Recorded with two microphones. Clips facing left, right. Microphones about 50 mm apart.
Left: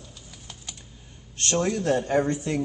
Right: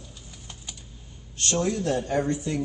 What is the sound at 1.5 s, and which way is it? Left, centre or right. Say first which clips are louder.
Speech: left 2 dB; left.